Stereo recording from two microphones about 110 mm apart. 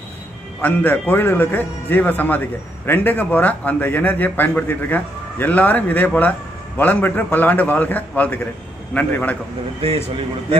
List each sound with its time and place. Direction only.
0.6 s a man's voice: 15° left (ahead or behind)